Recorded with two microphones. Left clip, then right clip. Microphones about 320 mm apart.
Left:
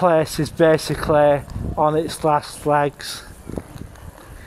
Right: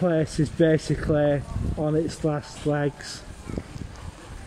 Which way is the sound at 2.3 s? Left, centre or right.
Centre.